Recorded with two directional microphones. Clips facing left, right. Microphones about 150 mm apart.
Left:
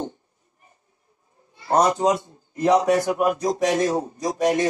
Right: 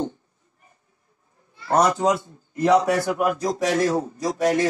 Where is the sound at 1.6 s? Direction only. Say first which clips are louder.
Even; 20° left (ahead or behind).